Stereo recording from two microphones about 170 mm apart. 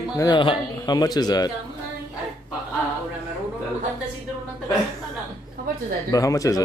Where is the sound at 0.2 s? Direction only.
25° left (ahead or behind).